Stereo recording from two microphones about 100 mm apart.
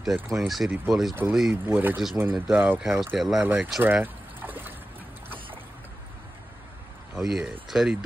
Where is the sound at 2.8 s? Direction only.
Centre (ahead or behind).